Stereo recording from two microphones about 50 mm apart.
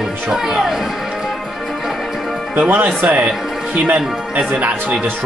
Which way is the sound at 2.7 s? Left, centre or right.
Right.